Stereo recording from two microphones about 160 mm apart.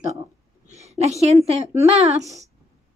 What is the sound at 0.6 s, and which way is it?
A woman's voice, 45° right (ahead or behind).